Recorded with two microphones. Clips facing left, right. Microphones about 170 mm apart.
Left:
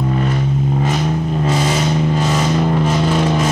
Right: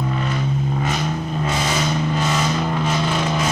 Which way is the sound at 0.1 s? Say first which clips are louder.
Left 5 dB; 30° left (ahead or behind).